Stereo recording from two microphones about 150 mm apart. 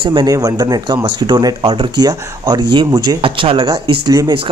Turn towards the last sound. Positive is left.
turn(degrees=-30)  # may be behind; listen again after turning